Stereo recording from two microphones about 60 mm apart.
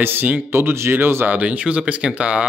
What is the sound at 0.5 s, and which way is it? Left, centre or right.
Speech, right.